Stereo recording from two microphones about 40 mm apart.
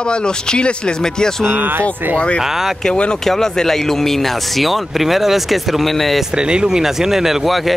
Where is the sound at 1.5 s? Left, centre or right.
Right.